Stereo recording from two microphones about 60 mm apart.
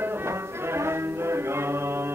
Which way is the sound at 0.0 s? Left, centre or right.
Right.